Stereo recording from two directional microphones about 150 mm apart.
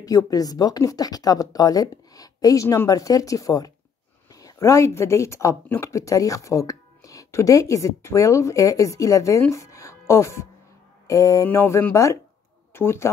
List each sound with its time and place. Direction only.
0.0 s speech: 25° left (ahead or behind)